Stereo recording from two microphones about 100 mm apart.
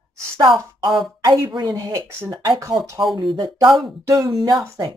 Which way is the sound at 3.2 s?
50° right (ahead or behind).